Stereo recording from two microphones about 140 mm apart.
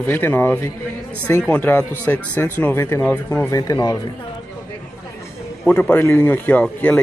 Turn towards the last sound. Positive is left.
turn(degrees=10)  # may be behind; listen again after turning